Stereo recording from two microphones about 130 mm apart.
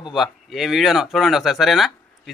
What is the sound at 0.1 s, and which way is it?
Speech, centre (ahead or behind).